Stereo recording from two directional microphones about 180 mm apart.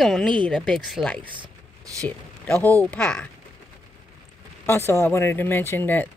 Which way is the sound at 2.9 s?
5° left (ahead or behind).